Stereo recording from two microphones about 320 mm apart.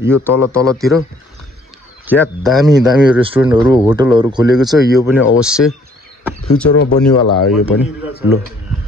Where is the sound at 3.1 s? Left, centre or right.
Centre.